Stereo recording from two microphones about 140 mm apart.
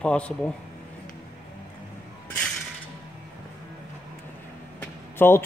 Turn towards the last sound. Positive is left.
turn(degrees=15)  # may be behind; listen again after turning